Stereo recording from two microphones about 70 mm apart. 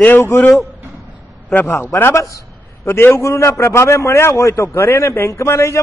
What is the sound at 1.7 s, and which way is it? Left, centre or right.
A man's voice, left.